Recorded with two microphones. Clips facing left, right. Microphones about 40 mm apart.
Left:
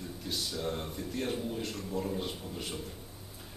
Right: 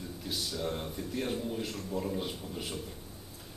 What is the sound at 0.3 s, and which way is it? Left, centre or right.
A man's voice, centre.